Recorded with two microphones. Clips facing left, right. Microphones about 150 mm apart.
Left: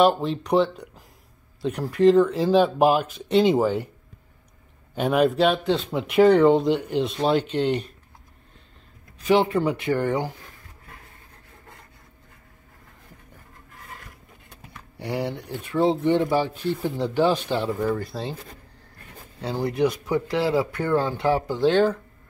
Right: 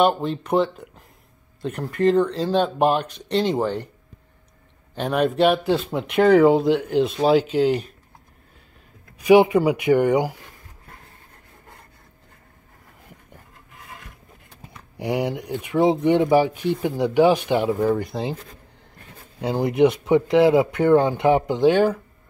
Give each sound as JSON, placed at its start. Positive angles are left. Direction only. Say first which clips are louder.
{"t": 0.0, "sound": "speech", "louder": "even", "side_deg": 0}
{"t": 4.9, "sound": "speech", "louder": "left 1 dB", "side_deg": 5}
{"t": 9.2, "sound": "speech", "louder": "right 6 dB", "side_deg": -15}
{"t": 14.7, "sound": "speech", "louder": "right 5 dB", "side_deg": -20}
{"t": 19.4, "sound": "speech", "louder": "right 5 dB", "side_deg": -20}